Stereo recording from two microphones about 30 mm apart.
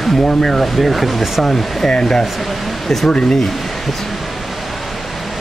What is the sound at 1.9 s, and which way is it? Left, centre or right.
Speech, left.